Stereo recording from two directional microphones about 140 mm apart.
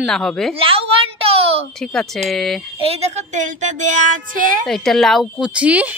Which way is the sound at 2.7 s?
45° right (ahead or behind).